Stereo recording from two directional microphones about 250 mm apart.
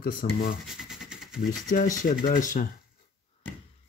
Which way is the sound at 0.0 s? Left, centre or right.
Left.